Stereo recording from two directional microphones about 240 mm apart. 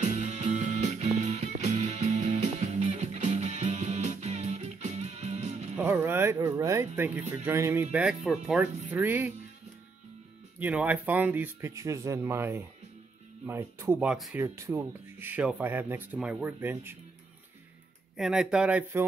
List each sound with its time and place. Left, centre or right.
0.0 s music: right
5.8 s speech: centre
10.6 s speech: centre
18.1 s speech: centre